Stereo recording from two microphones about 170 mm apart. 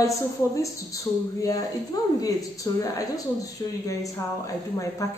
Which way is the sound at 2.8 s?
20° left (ahead or behind).